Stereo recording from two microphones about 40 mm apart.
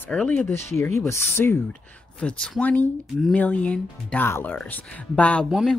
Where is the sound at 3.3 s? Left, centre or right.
Left.